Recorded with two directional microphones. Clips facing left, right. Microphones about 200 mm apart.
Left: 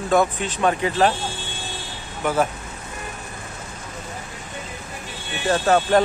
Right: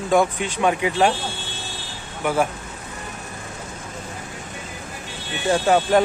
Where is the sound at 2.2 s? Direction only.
10° right (ahead or behind).